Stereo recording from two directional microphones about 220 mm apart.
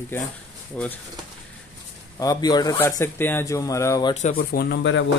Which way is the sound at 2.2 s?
15° left (ahead or behind).